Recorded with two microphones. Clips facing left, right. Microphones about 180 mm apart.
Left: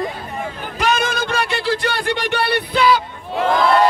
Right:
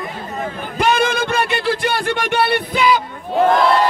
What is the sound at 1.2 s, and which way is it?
Music, 55° right (ahead or behind).